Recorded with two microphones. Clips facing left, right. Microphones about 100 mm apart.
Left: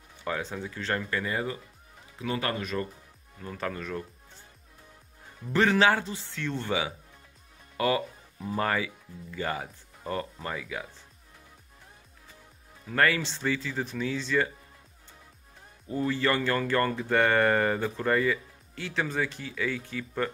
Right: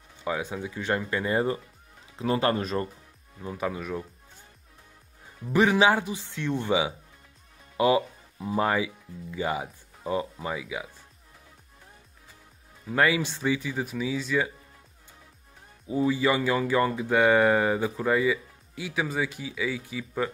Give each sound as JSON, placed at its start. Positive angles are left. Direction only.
{"t": 0.2, "sound": "speech", "side_deg": -10}
{"t": 1.2, "sound": "speech", "side_deg": -30}
{"t": 3.3, "sound": "speech", "side_deg": -15}
{"t": 5.5, "sound": "speech", "side_deg": -15}
{"t": 7.7, "sound": "music", "side_deg": -20}
{"t": 8.5, "sound": "speech", "side_deg": -15}
{"t": 12.8, "sound": "speech", "side_deg": -15}
{"t": 15.9, "sound": "speech", "side_deg": -10}